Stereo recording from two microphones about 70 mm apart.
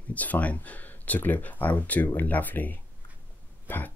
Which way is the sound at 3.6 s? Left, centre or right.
Left.